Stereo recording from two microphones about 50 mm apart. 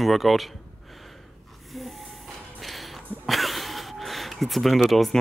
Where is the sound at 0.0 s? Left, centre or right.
Centre.